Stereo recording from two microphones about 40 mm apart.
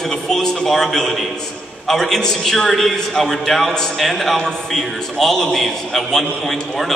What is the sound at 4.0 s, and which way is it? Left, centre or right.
A man's voice, centre.